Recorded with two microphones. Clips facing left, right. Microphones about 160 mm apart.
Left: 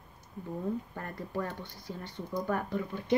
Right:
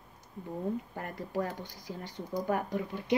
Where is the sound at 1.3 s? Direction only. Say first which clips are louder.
Right 2 dB; 35° right (ahead or behind).